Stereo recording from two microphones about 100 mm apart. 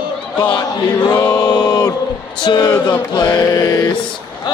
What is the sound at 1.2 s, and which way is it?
Chant, 45° left (ahead or behind).